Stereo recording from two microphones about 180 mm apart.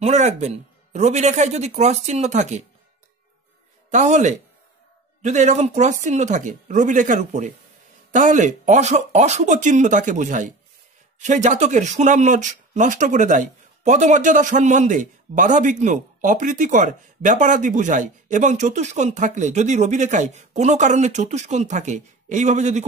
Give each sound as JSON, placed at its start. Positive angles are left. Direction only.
{"t": 0.0, "sound": "speech", "side_deg": -40}
{"t": 3.9, "sound": "speech", "side_deg": -40}